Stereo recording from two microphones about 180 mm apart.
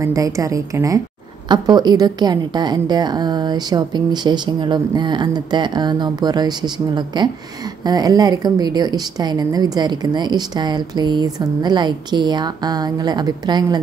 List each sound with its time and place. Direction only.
0.0 s a woman's voice: 20° right (ahead or behind)